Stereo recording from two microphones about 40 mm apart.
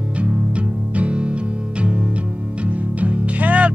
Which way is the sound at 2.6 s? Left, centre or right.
Right.